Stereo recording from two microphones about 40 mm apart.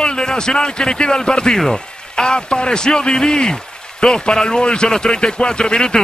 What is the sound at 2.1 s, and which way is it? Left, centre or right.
A man's voice, left.